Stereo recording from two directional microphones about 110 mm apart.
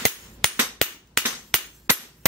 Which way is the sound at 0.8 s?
5° left (ahead or behind).